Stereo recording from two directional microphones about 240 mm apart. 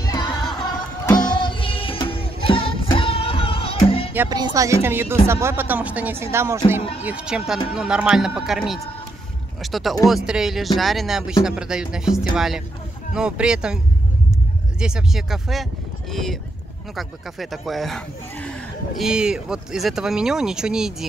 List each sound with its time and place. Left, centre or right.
0.0 s music: centre
4.1 s speech: centre
14.8 s speech: centre